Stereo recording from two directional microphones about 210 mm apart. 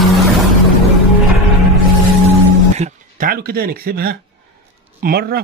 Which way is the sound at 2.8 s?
35° right (ahead or behind).